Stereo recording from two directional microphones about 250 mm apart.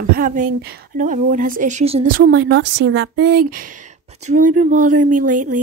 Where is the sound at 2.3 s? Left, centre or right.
Right.